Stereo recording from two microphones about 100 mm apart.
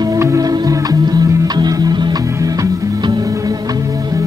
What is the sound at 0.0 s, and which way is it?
Music, 35° right (ahead or behind).